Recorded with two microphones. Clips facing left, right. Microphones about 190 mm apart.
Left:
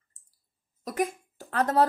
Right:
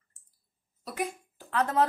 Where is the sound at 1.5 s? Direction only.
40° left (ahead or behind).